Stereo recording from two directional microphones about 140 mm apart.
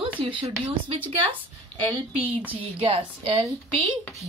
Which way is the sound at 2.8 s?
40° right (ahead or behind).